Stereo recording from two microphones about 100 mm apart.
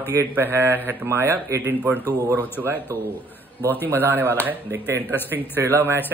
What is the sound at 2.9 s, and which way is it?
Speech, 30° right (ahead or behind).